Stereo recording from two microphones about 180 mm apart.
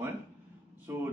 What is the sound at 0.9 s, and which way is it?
Speech, 15° right (ahead or behind).